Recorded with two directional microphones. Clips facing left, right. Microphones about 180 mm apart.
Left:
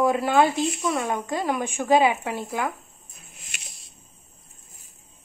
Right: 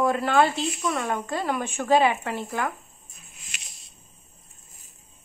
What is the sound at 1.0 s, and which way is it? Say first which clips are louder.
A woman's voice: left 1 dB; 15° left (ahead or behind).